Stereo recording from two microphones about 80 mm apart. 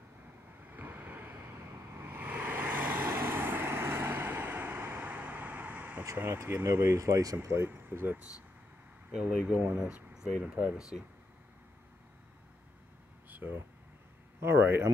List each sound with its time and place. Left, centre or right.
0.7 s vehicle: right
6.1 s speech: right
7.0 s speech: right
7.4 s speech: right; by 10.6 s centre
10.9 s speech: centre
13.3 s air conditioning: right
14.4 s speech: right